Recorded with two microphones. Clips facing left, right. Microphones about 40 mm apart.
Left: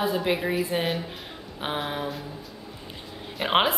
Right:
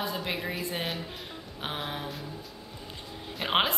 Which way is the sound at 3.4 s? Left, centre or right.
Centre.